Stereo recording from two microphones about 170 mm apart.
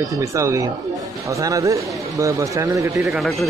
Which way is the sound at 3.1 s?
Centre (ahead or behind).